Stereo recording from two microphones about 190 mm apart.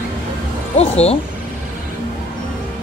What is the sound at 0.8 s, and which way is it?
Speech, 35° left (ahead or behind).